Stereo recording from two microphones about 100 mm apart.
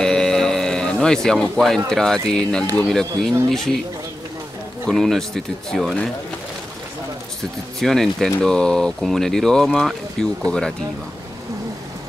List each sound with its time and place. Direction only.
0.0 s music: 5° left (ahead or behind)
2.9 s speech: 5° left (ahead or behind)
4.8 s speech: 5° left (ahead or behind)
7.8 s speech: 5° left (ahead or behind)